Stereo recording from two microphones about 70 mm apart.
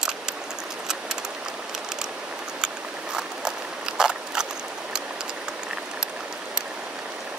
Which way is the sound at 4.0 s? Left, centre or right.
Centre.